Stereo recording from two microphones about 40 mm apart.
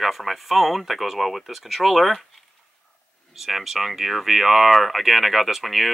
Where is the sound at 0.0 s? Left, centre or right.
Centre.